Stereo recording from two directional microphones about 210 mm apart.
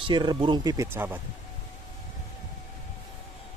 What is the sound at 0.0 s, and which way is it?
Speech, 20° right (ahead or behind).